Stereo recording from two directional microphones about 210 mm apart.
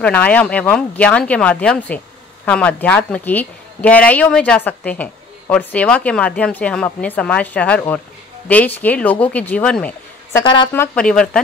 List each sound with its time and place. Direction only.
0.0 s a woman's voice: 5° left (ahead or behind)
10.4 s a woman's voice: 20° left (ahead or behind)
10.7 s speech: 5° left (ahead or behind)